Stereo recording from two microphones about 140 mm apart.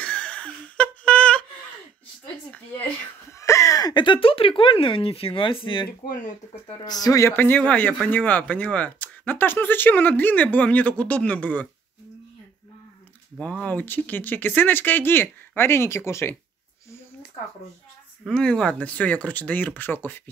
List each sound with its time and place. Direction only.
0.0 s laughter: 10° left (ahead or behind)
3.3 s speech: 20° left (ahead or behind)
13.4 s speech: 10° left (ahead or behind)
18.2 s speech: 5° left (ahead or behind)